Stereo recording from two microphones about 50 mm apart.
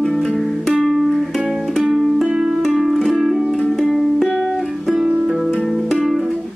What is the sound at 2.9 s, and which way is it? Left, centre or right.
Music, centre.